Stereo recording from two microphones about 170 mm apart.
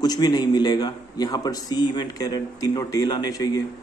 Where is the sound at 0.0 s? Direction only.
25° left (ahead or behind).